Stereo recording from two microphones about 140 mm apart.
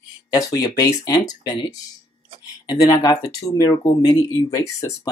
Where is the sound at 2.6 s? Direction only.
25° left (ahead or behind).